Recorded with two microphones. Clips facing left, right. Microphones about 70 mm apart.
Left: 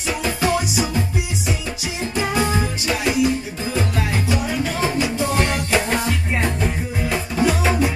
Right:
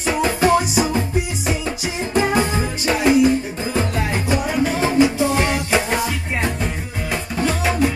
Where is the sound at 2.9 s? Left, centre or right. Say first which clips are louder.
Right 5 dB; right.